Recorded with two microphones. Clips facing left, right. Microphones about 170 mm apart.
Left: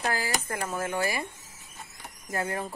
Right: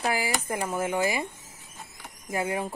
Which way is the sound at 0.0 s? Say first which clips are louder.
Right 2 dB; 10° right (ahead or behind).